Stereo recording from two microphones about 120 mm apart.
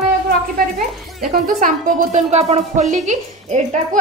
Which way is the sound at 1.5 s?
85° right.